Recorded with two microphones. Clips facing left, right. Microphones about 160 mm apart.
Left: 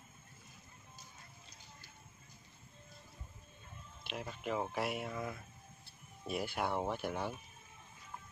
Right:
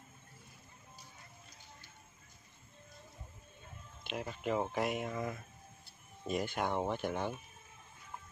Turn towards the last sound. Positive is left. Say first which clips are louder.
# right 2 dB
turn(degrees=5)  # may be behind; listen again after turning